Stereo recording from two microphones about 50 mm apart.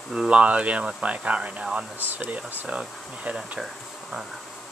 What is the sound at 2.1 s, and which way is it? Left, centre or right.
Speech, right.